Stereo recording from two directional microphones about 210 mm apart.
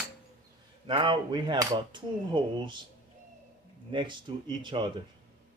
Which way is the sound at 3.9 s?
25° right (ahead or behind).